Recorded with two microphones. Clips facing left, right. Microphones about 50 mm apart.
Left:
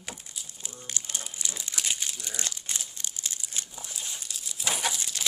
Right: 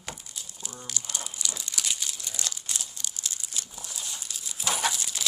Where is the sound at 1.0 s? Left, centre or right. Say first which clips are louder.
Even; left.